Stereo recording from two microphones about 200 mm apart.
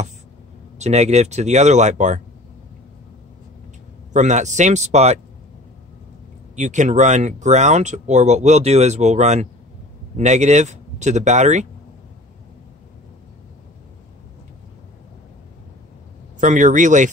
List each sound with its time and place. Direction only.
0.7 s speech: 35° right (ahead or behind)
4.1 s speech: 35° right (ahead or behind)
6.5 s speech: 35° right (ahead or behind)
16.3 s speech: 40° right (ahead or behind)